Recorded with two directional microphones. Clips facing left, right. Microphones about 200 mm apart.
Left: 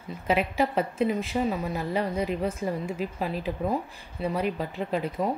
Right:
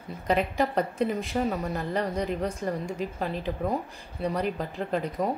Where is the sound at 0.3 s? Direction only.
5° left (ahead or behind).